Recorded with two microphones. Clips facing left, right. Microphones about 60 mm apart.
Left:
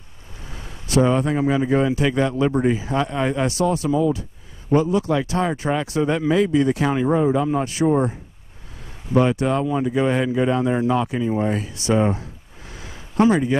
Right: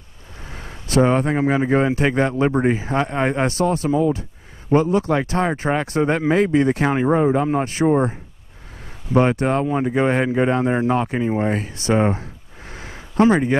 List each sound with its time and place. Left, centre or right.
0.5 s speech: right
9.1 s speech: right